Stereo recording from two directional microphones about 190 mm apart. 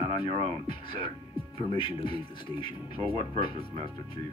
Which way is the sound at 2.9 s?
30° right (ahead or behind).